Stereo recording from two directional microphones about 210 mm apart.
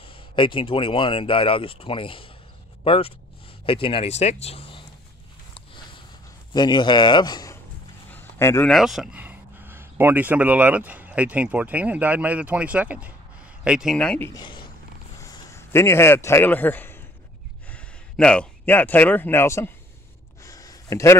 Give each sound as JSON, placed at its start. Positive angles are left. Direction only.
{"t": 0.0, "sound": "speech", "side_deg": 25}
{"t": 5.5, "sound": "walk", "side_deg": 25}
{"t": 6.5, "sound": "speech", "side_deg": 20}
{"t": 8.1, "sound": "a sound", "side_deg": 10}
{"t": 8.7, "sound": "a man's voice", "side_deg": 0}
{"t": 14.3, "sound": "speech", "side_deg": 20}
{"t": 15.1, "sound": "a sound", "side_deg": 15}
{"t": 17.6, "sound": "speech", "side_deg": 5}
{"t": 20.4, "sound": "a sound", "side_deg": 15}